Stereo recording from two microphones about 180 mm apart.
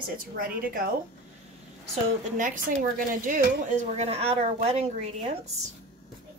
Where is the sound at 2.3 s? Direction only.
45° right (ahead or behind).